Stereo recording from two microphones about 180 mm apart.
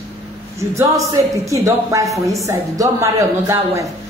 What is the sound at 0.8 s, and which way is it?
A man's voice, 15° right (ahead or behind).